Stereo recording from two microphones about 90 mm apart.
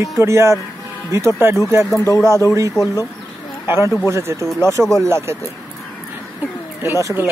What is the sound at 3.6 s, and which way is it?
Speech, 30° right (ahead or behind).